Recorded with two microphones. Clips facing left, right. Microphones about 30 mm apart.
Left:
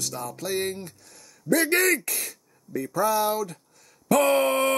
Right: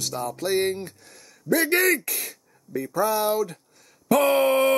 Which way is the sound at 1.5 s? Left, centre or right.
Centre.